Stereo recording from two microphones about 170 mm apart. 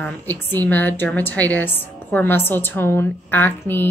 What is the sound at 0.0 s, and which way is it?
A woman's voice, 10° left (ahead or behind).